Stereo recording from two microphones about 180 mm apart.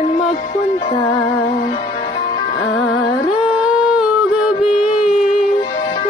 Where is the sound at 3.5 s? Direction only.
5° right (ahead or behind).